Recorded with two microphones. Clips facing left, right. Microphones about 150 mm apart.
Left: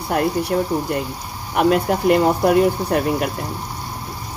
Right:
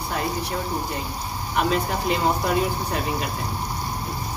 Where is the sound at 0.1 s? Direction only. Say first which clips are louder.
Left 8 dB; 65° left (ahead or behind).